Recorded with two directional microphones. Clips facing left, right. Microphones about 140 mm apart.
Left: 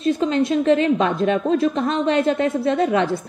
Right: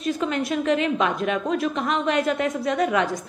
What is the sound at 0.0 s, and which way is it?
A woman's voice, 25° left (ahead or behind).